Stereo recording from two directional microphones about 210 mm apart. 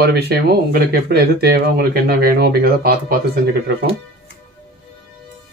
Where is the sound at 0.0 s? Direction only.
50° right (ahead or behind).